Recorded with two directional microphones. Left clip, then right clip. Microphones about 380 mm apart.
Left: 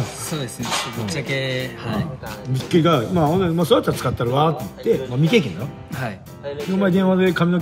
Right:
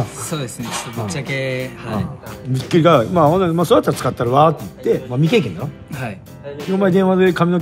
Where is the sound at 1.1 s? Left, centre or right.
Centre.